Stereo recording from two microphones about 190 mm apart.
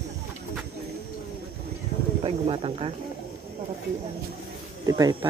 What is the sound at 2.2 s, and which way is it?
Speech, 30° right (ahead or behind).